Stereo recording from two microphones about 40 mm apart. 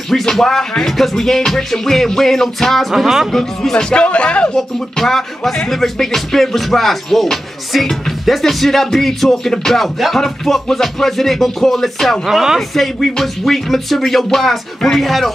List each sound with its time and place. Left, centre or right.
0.1 s music: centre
3.0 s music: centre
3.7 s speech: left
4.6 s music: centre
9.7 s music: centre
12.3 s speech: centre
12.5 s music: centre